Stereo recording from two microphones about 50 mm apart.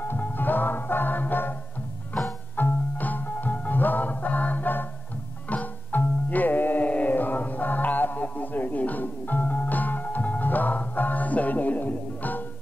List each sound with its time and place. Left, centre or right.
0.0 s music: left